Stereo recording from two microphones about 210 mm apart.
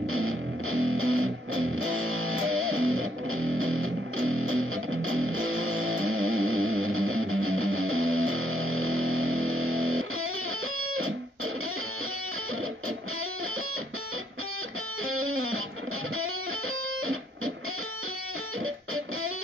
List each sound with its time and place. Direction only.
0.1 s music: 75° right (ahead or behind)
15.0 s music: 80° right